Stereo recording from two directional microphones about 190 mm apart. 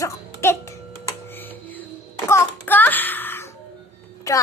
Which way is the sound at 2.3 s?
10° left (ahead or behind).